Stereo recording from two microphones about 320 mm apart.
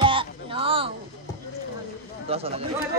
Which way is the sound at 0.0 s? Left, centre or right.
Centre.